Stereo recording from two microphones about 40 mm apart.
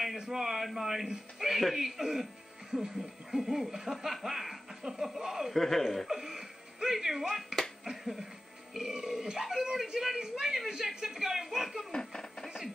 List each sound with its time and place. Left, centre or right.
0.0 s snicker: centre
2.7 s speech: centre
3.5 s snicker: centre
5.5 s speech: centre
6.0 s speech: centre
11.9 s music: centre